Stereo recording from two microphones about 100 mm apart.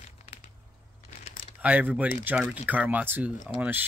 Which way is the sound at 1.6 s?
15° right (ahead or behind).